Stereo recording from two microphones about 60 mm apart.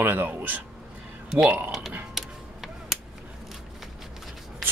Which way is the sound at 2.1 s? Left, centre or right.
Centre.